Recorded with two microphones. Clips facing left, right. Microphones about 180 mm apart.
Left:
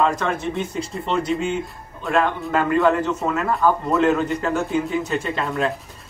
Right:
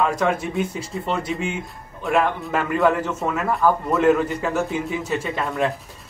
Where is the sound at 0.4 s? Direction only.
5° right (ahead or behind).